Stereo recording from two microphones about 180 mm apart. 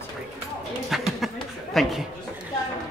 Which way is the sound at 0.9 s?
Centre (ahead or behind).